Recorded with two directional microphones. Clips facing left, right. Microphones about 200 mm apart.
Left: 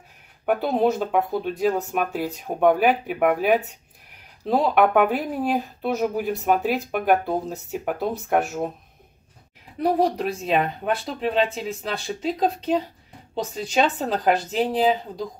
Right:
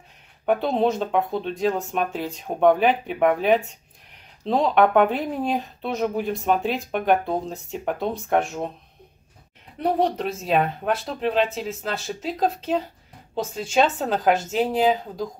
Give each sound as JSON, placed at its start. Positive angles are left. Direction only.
{"t": 0.5, "sound": "speech", "side_deg": 5}
{"t": 9.8, "sound": "speech", "side_deg": 0}